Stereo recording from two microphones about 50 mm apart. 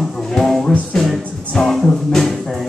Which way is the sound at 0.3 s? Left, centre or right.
Centre.